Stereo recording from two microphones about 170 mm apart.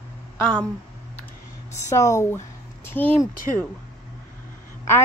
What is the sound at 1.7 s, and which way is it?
A woman's voice, 15° left (ahead or behind).